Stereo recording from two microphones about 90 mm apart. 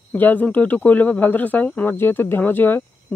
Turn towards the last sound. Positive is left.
turn(degrees=25)  # may be behind; listen again after turning